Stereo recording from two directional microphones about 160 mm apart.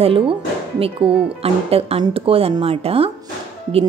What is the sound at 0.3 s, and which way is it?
Speech, 35° right (ahead or behind).